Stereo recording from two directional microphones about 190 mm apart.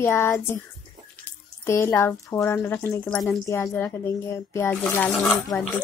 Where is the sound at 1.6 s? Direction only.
15° left (ahead or behind).